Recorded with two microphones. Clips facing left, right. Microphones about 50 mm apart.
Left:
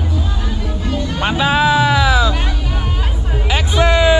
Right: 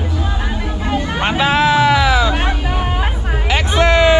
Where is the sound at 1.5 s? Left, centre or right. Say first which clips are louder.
Right 1 dB; right.